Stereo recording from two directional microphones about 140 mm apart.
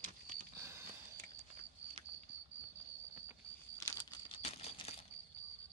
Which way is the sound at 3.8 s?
20° left (ahead or behind).